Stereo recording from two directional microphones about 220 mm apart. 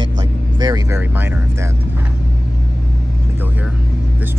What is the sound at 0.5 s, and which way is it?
Speech, 20° right (ahead or behind).